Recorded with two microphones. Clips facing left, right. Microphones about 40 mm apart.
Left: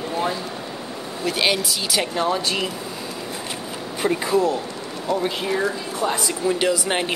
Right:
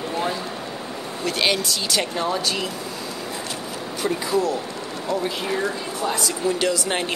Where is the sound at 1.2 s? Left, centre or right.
Centre.